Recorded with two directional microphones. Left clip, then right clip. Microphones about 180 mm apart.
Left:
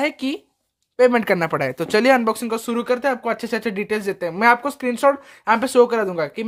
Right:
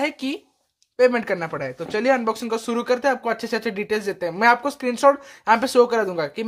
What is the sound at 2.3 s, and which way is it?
Speech, 20° left (ahead or behind).